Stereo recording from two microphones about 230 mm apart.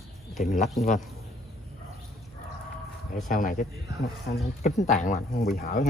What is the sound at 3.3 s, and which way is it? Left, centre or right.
Speech, left.